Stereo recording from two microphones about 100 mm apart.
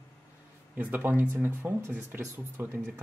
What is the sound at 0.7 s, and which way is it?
Speech, 15° right (ahead or behind).